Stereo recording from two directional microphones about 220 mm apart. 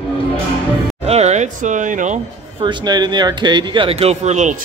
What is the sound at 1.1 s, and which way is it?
Speech, 30° right (ahead or behind).